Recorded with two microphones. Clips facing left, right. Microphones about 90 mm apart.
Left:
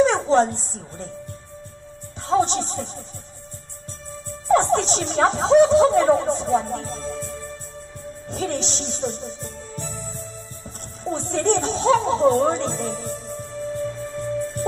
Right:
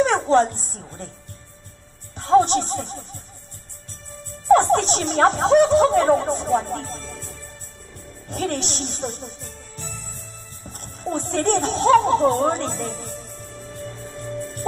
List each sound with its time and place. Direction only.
0.0 s speech: 55° right (ahead or behind)
2.2 s speech: 55° right (ahead or behind)
4.5 s speech: 55° right (ahead or behind)
8.3 s speech: 55° right (ahead or behind)
11.1 s speech: 55° right (ahead or behind)